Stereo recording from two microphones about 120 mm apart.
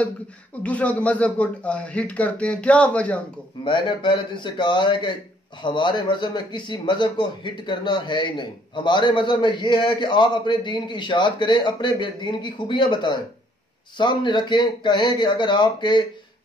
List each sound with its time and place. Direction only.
0.6 s speech: 10° left (ahead or behind)
3.6 s speech: 40° left (ahead or behind)